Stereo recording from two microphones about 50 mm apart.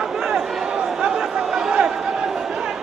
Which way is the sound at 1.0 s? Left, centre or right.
Centre.